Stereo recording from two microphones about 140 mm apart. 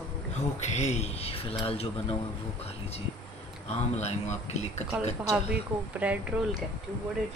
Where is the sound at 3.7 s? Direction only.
50° left (ahead or behind).